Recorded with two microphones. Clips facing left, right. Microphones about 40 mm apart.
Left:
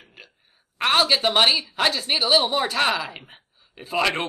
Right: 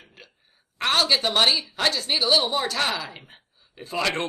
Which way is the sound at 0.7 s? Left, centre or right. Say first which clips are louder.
Left 2 dB; centre.